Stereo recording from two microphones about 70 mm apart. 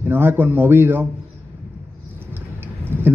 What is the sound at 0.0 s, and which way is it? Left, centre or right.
Speech, right.